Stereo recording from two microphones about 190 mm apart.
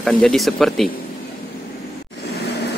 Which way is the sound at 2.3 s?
60° left (ahead or behind).